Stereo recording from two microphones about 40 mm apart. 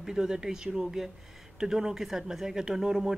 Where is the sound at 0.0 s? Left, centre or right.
Centre.